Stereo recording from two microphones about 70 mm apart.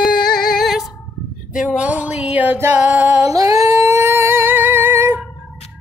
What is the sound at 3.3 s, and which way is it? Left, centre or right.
Singing, right.